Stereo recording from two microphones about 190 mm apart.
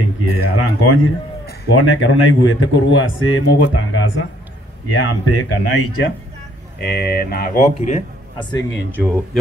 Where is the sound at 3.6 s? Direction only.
90° left.